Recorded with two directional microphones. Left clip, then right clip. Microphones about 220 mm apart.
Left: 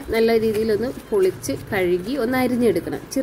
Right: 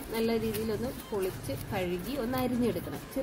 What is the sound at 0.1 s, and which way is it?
A woman's voice, 15° left (ahead or behind).